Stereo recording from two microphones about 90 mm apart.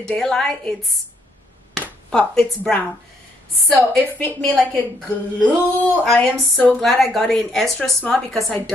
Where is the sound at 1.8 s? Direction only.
10° left (ahead or behind).